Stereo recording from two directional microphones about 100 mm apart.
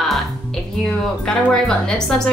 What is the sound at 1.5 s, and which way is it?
Speech, 5° left (ahead or behind).